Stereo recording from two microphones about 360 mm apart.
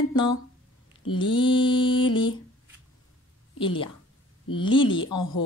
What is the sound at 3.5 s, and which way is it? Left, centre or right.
Mantra, centre.